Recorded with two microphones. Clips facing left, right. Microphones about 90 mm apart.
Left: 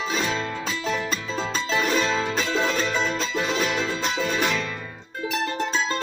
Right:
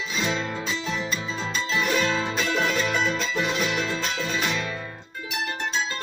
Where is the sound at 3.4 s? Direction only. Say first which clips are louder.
Left 2 dB; 40° left (ahead or behind).